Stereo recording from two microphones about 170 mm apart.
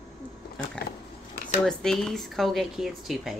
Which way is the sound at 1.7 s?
Centre (ahead or behind).